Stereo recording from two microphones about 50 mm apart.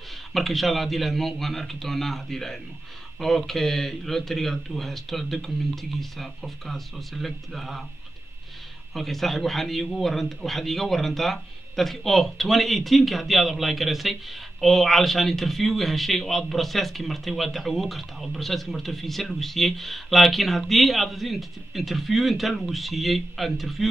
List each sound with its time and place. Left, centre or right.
0.3 s a man's voice: centre
8.9 s a man's voice: centre